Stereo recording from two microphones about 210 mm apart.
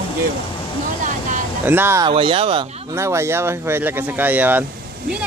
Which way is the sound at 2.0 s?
25° right (ahead or behind).